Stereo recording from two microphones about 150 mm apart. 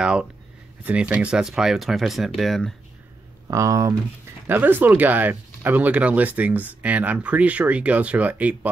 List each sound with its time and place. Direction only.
0.0 s speech: 5° right (ahead or behind)
3.4 s speech: 20° right (ahead or behind)